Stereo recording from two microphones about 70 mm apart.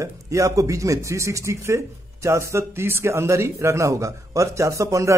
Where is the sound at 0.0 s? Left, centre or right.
Right.